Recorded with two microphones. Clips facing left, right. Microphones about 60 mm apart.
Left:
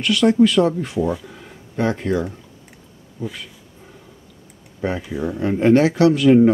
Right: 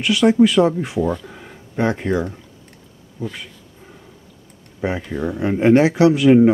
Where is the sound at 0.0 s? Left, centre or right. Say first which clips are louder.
Right 1 dB; centre.